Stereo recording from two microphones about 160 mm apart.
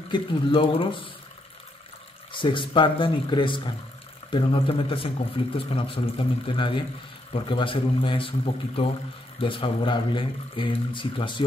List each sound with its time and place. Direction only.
0.1 s speech: 30° left (ahead or behind)
2.3 s speech: 30° left (ahead or behind)